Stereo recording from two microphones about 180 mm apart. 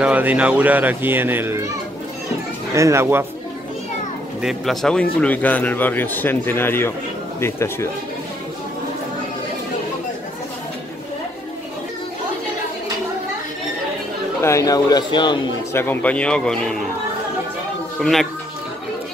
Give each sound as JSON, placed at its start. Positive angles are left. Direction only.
{"t": 0.0, "sound": "speech", "side_deg": -10}
{"t": 2.7, "sound": "speech", "side_deg": -15}
{"t": 4.4, "sound": "speech", "side_deg": 0}
{"t": 14.4, "sound": "speech", "side_deg": 15}
{"t": 15.7, "sound": "speech", "side_deg": 10}
{"t": 17.9, "sound": "speech", "side_deg": 0}